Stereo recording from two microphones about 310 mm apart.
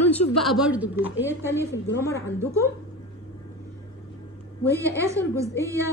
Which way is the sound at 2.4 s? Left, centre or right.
Centre.